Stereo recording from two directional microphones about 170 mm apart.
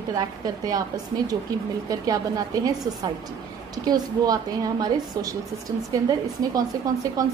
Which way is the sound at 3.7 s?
20° right (ahead or behind).